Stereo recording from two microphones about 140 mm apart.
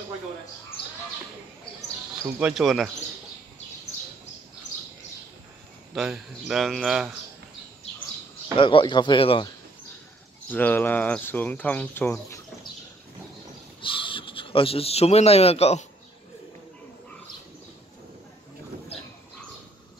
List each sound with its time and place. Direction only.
2.3 s speech: 5° right (ahead or behind)
5.9 s speech: 5° right (ahead or behind)
8.5 s speech: 35° left (ahead or behind)
10.5 s speech: 10° left (ahead or behind)
13.7 s speech: 35° left (ahead or behind)